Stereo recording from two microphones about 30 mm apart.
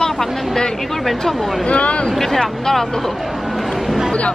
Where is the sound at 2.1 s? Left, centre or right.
Centre.